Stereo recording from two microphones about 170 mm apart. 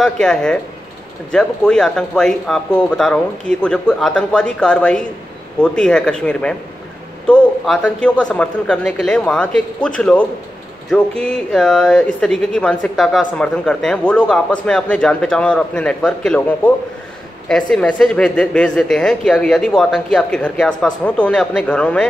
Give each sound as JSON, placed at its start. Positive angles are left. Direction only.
{"t": 0.0, "sound": "speech", "side_deg": 5}